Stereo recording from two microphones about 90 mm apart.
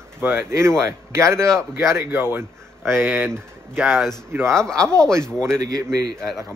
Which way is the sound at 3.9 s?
Centre (ahead or behind).